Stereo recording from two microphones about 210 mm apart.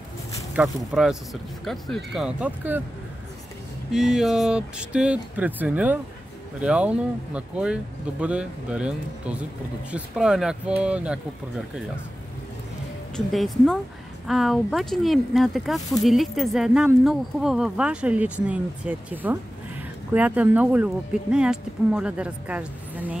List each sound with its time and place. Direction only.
0.6 s speech: centre (ahead or behind)
3.9 s speech: centre (ahead or behind)
13.1 s speech: centre (ahead or behind)